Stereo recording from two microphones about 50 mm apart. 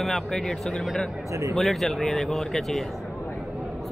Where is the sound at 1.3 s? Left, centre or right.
Right.